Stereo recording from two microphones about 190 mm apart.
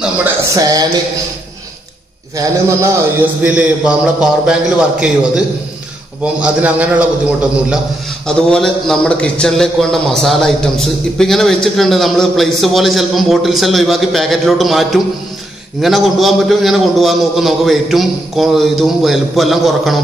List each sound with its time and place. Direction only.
0.6 s a sound: 20° right (ahead or behind)
2.3 s a man's voice: 15° right (ahead or behind)
6.4 s a man's voice: 5° right (ahead or behind)
8.3 s a man's voice: 5° left (ahead or behind)